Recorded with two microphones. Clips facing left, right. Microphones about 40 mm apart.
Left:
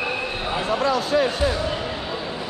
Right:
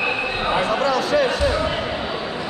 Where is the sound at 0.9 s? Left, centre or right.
Right.